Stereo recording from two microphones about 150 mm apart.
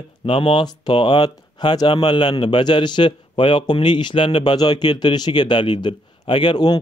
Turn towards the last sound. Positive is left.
turn(degrees=30)  # may be behind; listen again after turning